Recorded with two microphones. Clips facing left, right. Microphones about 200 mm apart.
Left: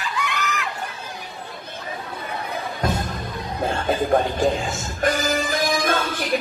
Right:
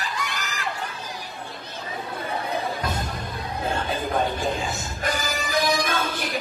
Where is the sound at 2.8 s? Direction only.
50° left (ahead or behind).